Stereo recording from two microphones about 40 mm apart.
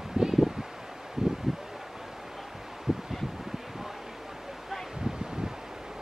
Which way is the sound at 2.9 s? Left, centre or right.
Centre.